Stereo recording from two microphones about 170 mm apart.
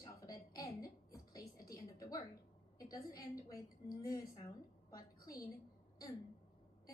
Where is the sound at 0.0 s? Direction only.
20° left (ahead or behind).